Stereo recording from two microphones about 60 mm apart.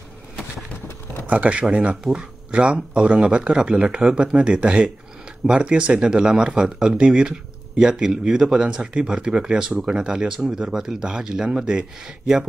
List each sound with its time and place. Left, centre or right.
1.2 s speech: right